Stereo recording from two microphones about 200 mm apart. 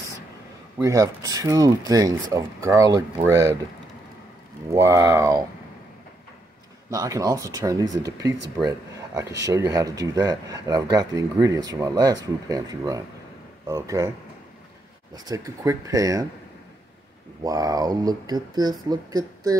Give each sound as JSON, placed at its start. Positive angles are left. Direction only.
{"t": 0.7, "sound": "speech", "side_deg": -15}
{"t": 4.7, "sound": "speech", "side_deg": -15}
{"t": 6.9, "sound": "speech", "side_deg": -15}
{"t": 15.2, "sound": "speech", "side_deg": -15}
{"t": 17.4, "sound": "speech", "side_deg": -20}